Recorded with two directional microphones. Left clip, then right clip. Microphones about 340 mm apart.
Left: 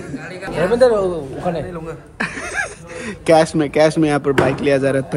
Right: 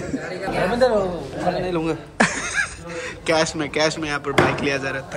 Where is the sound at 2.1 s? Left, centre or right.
Centre.